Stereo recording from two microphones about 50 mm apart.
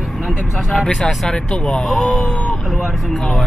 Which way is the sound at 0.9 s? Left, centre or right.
Centre.